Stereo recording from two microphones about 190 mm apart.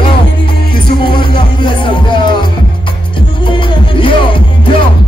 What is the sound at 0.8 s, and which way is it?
Music, 25° left (ahead or behind).